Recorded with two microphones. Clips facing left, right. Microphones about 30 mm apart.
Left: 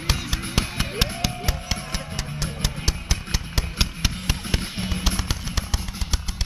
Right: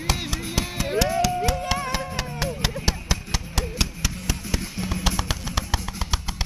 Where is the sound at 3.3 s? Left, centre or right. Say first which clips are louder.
Right 1 dB; centre.